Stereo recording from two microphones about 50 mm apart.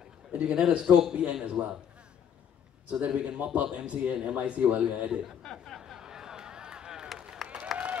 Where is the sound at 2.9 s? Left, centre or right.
Right.